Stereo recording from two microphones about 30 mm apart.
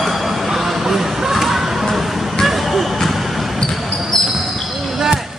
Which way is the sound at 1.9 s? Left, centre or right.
Centre.